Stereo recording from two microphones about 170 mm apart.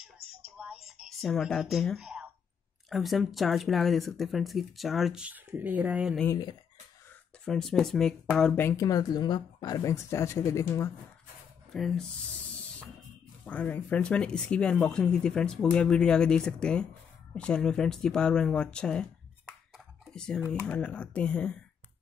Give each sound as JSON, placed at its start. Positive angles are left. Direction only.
{"t": 0.0, "sound": "a sound", "side_deg": 0}
{"t": 2.9, "sound": "speech", "side_deg": 0}
{"t": 7.4, "sound": "speech", "side_deg": 5}
{"t": 11.7, "sound": "speech", "side_deg": 5}
{"t": 13.5, "sound": "speech", "side_deg": 10}
{"t": 20.1, "sound": "speech", "side_deg": 5}